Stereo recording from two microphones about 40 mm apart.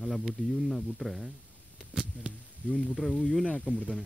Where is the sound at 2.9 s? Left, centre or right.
Centre.